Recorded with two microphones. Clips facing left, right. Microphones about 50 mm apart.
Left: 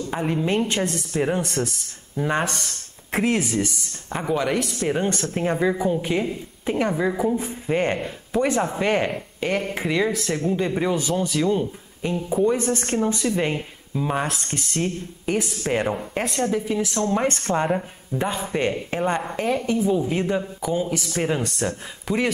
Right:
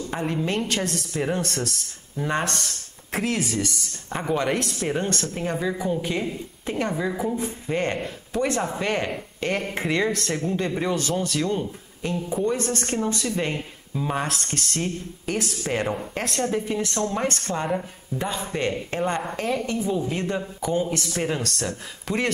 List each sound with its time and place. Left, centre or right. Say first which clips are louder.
0.1 s a man's voice: left 3 dB; centre
3.1 s speech: left 4 dB; left
4.1 s a woman's voice: left 1 dB; centre
5.3 s a man's voice: left 5 dB; left
9.5 s a woman's voice: left 1 dB; centre
17.3 s a man's voice: left 4 dB; left; by 19.6 s centre
19.6 s a man's voice: left 4 dB; centre